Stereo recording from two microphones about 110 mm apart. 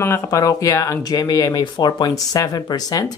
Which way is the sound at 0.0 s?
30° left (ahead or behind).